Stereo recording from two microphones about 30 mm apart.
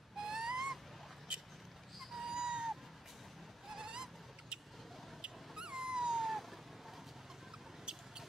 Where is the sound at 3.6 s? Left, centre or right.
Centre.